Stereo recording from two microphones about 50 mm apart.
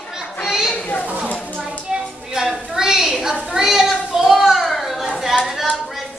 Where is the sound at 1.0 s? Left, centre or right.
Right.